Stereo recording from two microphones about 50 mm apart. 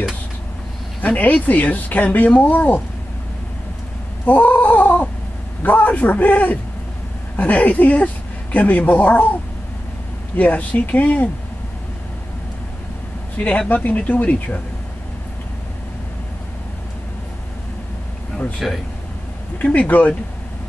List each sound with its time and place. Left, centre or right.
1.0 s speech: left
4.3 s speech: left
13.7 s speech: left
18.6 s speech: centre
19.6 s speech: left